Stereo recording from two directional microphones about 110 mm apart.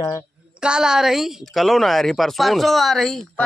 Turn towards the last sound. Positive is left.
turn(degrees=0)  # may be behind; listen again after turning